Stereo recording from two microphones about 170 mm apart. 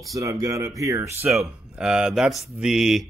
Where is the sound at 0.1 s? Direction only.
20° right (ahead or behind).